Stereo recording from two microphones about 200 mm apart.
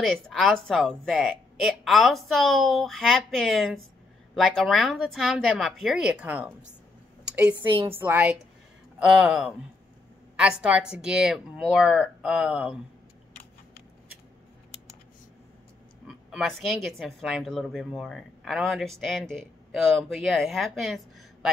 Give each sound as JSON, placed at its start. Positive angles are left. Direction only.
{"t": 0.0, "sound": "a woman's voice", "side_deg": 0}
{"t": 7.2, "sound": "a sound", "side_deg": -5}
{"t": 7.7, "sound": "a woman's voice", "side_deg": -25}
{"t": 8.0, "sound": "a woman's voice", "side_deg": -10}
{"t": 16.1, "sound": "a woman's voice", "side_deg": -5}